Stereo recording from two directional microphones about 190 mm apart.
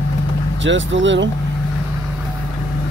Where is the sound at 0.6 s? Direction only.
75° right (ahead or behind).